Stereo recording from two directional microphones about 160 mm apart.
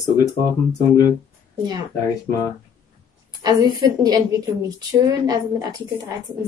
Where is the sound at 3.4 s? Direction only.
25° right (ahead or behind).